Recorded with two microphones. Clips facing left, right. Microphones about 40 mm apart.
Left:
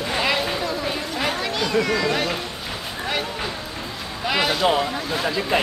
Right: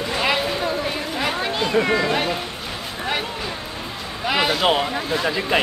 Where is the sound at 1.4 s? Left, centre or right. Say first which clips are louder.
Right 3 dB; right.